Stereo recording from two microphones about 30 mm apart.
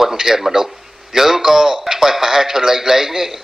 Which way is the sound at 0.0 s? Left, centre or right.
Centre.